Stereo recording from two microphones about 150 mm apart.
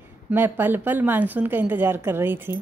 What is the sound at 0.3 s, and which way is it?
Speech, 15° right (ahead or behind).